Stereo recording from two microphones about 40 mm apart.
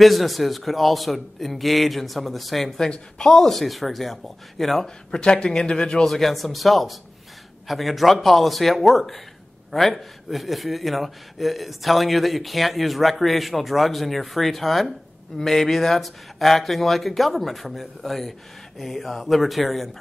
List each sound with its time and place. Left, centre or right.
0.0 s a man's voice: centre
2.9 s a man's voice: centre
4.8 s speech: left
6.0 s a man's voice: centre